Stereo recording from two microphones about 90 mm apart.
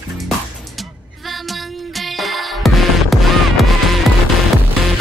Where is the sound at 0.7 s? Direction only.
Centre (ahead or behind).